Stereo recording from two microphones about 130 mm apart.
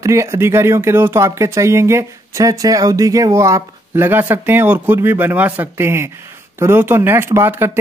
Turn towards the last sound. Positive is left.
turn(degrees=-20)  # may be behind; listen again after turning